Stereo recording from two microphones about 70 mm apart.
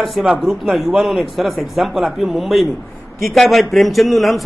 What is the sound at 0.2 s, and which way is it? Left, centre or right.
A man's voice, centre.